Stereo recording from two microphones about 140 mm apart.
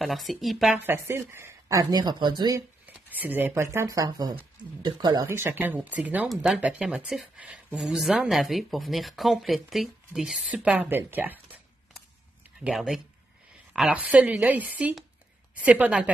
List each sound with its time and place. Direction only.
0.0 s speech: centre (ahead or behind)
0.8 s speech: 15° right (ahead or behind)
3.1 s speech: 15° right (ahead or behind)
3.7 s speech: 25° right (ahead or behind)
5.2 s a woman's voice: 15° right (ahead or behind)